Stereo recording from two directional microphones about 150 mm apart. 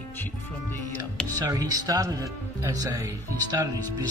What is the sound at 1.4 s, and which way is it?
Speech, 25° right (ahead or behind).